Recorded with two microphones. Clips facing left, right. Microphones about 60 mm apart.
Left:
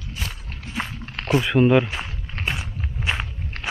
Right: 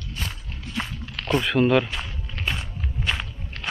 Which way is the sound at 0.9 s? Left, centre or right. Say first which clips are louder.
Left 1 dB; left.